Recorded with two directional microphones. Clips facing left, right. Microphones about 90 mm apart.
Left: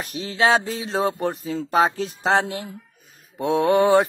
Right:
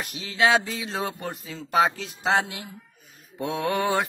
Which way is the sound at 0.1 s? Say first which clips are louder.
Left 2 dB; 35° left (ahead or behind).